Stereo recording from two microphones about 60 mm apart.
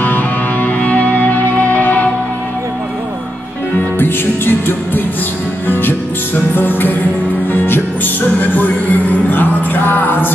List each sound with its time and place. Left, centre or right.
0.0 s music: left
4.0 s music: left